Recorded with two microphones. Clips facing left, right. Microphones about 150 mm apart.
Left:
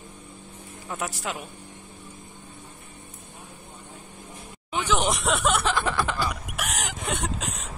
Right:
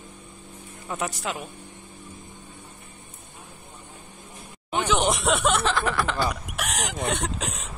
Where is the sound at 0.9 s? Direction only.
5° left (ahead or behind).